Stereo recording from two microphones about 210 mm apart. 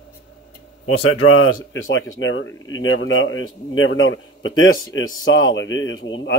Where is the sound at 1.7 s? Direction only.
65° left (ahead or behind).